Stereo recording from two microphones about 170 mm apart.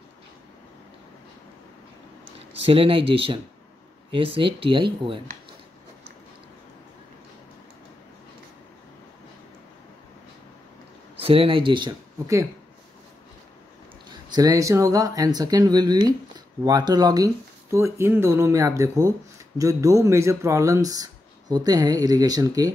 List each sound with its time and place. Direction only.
2.6 s speech: 35° right (ahead or behind)
11.1 s speech: 35° right (ahead or behind)
14.3 s speech: 20° right (ahead or behind)